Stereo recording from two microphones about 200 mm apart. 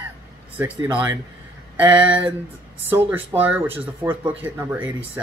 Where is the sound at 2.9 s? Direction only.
10° right (ahead or behind).